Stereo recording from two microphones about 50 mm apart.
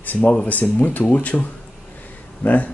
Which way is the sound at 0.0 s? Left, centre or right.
Left.